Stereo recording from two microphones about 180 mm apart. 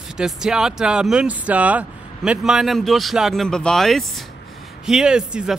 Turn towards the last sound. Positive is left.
turn(degrees=-5)  # may be behind; listen again after turning